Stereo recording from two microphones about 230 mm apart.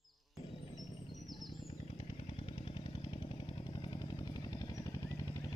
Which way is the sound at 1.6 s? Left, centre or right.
Left.